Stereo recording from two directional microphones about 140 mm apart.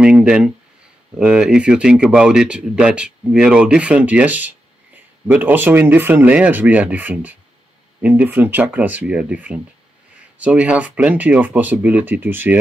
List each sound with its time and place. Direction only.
0.0 s speech: 5° right (ahead or behind)